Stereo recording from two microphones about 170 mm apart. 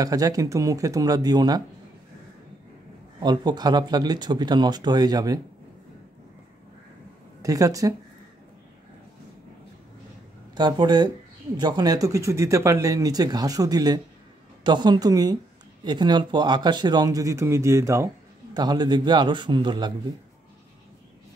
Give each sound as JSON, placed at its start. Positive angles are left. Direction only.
{"t": 0.0, "sound": "speech", "side_deg": -20}
{"t": 3.2, "sound": "speech", "side_deg": -25}
{"t": 7.4, "sound": "speech", "side_deg": -20}
{"t": 10.5, "sound": "speech", "side_deg": -25}